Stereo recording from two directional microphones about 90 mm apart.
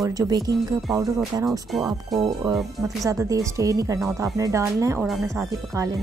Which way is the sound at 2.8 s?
35° right (ahead or behind).